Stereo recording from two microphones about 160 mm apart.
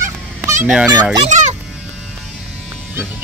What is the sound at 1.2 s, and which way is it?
Speech, 50° right (ahead or behind).